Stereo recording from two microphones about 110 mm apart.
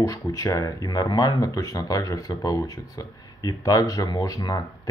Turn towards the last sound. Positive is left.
turn(degrees=35)  # may be behind; listen again after turning